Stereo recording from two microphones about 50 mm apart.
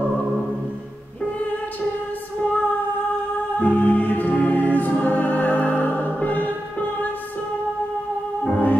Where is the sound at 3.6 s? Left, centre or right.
Left.